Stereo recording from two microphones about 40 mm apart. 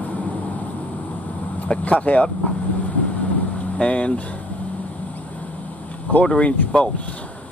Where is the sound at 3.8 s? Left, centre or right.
Left.